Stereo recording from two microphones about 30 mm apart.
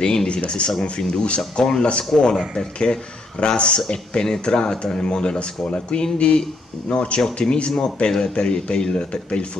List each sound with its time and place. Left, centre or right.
0.0 s speech: left
0.5 s speech: left
2.1 s speech: centre
2.5 s speech: left